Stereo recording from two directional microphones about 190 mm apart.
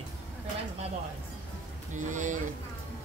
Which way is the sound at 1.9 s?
40° right (ahead or behind).